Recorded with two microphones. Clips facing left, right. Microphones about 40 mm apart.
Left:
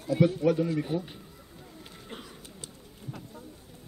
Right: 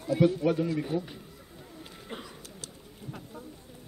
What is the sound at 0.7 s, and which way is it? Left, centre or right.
Speech, centre.